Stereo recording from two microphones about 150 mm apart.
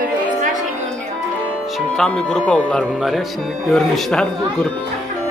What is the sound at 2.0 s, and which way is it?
Speech, 5° left (ahead or behind).